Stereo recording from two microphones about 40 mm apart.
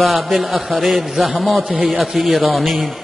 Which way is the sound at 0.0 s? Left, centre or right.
Centre.